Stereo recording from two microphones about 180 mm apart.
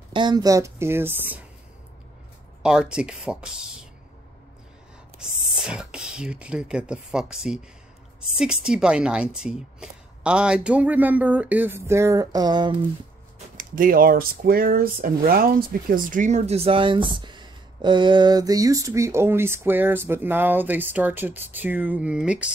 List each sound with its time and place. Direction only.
0.1 s a woman's voice: 25° right (ahead or behind)
2.6 s speech: 5° right (ahead or behind)
5.6 s a woman's voice: 5° right (ahead or behind); by 12.7 s 25° right (ahead or behind)
13.6 s speech: 50° right (ahead or behind); by 22.5 s 5° right (ahead or behind)